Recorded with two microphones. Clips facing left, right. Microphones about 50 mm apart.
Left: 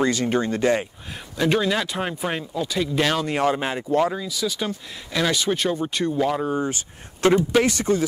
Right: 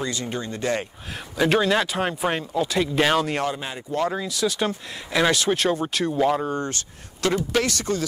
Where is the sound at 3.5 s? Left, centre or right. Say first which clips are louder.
Left 7 dB; left.